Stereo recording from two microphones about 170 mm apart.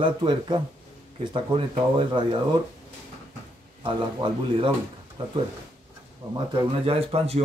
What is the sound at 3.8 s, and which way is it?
Speech, 30° right (ahead or behind).